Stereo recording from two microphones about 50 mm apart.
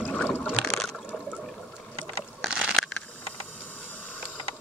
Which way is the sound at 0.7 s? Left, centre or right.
Centre.